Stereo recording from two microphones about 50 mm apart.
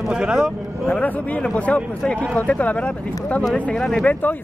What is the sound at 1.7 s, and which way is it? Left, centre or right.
Speech, left.